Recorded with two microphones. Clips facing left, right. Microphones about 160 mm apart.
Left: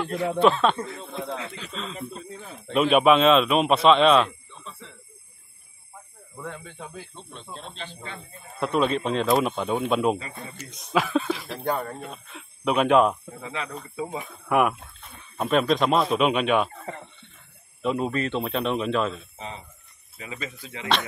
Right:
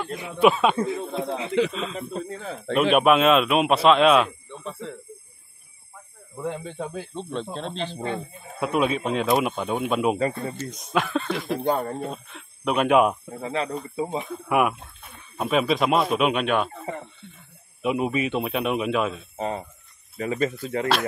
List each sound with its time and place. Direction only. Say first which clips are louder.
0.1 s speech: right 1 dB; 15° right (ahead or behind)
1.7 s speech: right 4 dB; centre (ahead or behind)
2.0 s speech: right 5 dB; 85° right
2.7 s speech: even; centre (ahead or behind)
4.5 s a sound: right 10 dB; 55° right (ahead or behind)
6.3 s speech: right 7 dB; 25° right (ahead or behind)
7.2 s speech: right 11 dB; 90° right
8.3 s speech: right 1 dB; 10° right (ahead or behind)
11.4 s speech: right 4 dB; 20° right (ahead or behind)
12.3 s speech: left 5 dB; centre (ahead or behind)
13.4 s speech: right 6 dB; 35° right (ahead or behind)
14.2 s speech: left 2 dB; centre (ahead or behind)
17.8 s speech: right 2 dB; 10° right (ahead or behind)
19.3 s speech: right 10 dB; 50° right (ahead or behind)